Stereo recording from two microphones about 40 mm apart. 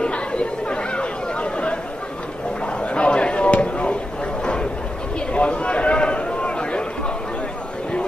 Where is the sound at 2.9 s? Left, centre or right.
Left.